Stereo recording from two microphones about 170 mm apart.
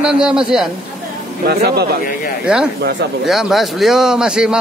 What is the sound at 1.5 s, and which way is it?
Speech, 70° right (ahead or behind).